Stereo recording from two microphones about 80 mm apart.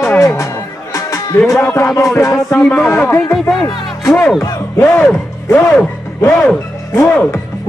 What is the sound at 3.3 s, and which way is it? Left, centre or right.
Speech, centre.